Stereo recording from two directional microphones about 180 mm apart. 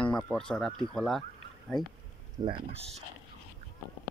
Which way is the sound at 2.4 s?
30° right (ahead or behind).